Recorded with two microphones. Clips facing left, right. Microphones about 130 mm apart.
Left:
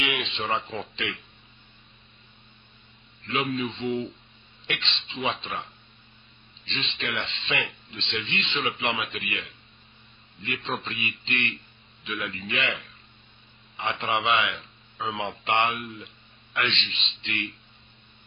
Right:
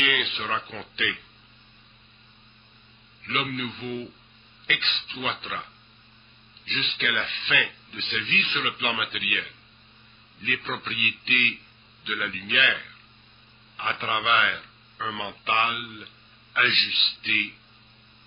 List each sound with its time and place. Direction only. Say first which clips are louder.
0.0 s a man's voice: even; 25° left (ahead or behind)
3.3 s a man's voice: left 3 dB; 25° left (ahead or behind)